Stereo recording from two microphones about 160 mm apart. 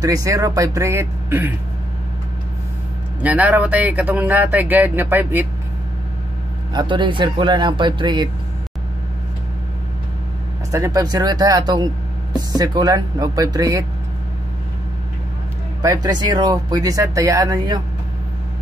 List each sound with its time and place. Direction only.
0.0 s speech: 20° right (ahead or behind)
3.2 s speech: 10° right (ahead or behind)
6.7 s speech: 30° right (ahead or behind)
10.7 s speech: 20° right (ahead or behind)
15.8 s speech: 20° right (ahead or behind)